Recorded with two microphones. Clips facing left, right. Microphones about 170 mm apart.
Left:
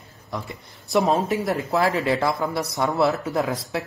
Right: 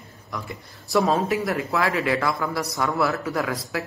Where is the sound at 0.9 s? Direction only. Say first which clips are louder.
Left 1 dB; 25° left (ahead or behind).